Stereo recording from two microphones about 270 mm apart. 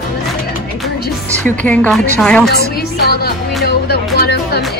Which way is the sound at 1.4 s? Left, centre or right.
Centre.